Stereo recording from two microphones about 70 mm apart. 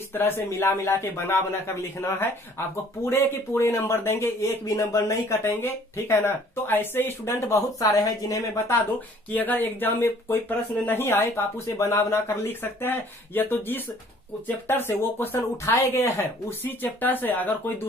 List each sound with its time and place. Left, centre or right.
0.1 s speech: left
9.3 s speech: left